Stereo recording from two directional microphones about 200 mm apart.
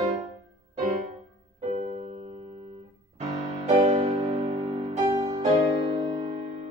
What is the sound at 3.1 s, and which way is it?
Music, 35° right (ahead or behind).